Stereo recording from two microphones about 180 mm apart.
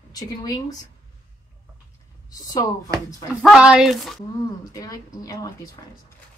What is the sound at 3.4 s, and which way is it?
Speech, 5° right (ahead or behind).